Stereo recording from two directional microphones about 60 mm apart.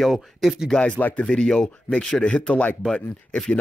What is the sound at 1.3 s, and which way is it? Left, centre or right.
Speech, centre.